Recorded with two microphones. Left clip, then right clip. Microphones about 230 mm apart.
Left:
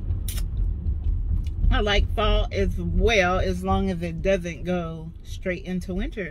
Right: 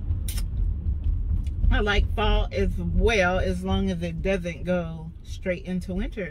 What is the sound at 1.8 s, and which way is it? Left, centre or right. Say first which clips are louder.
Speech: left 2 dB; right.